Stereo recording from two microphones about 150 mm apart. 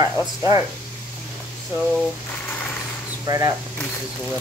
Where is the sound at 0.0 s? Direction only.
20° right (ahead or behind).